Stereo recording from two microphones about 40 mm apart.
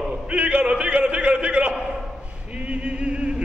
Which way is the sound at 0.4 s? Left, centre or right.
Right.